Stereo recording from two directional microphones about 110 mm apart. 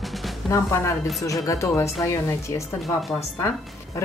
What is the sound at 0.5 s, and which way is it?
A woman's voice, 30° left (ahead or behind).